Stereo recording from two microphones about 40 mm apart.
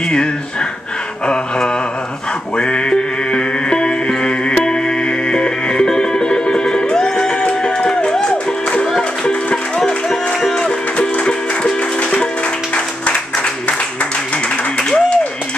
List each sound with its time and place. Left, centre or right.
1.2 s a sound: left
2.5 s music: left
9.8 s music: centre
14.8 s applause: left